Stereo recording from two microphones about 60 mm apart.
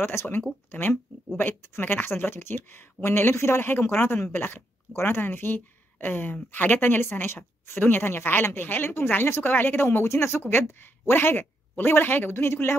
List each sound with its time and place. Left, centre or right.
0.0 s speech: left